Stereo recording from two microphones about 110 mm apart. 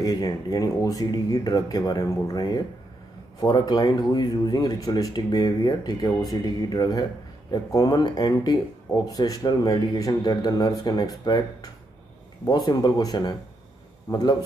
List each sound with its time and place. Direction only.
0.0 s speech: 35° left (ahead or behind)
14.1 s a man's voice: 25° left (ahead or behind)